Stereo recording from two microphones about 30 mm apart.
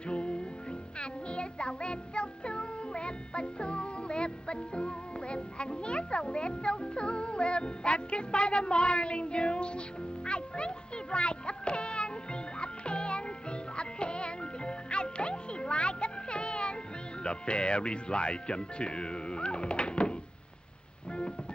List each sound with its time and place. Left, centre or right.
0.0 s music: left
17.2 s speech: left